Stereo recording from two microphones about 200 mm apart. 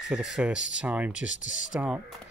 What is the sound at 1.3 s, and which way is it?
Speech, 40° left (ahead or behind).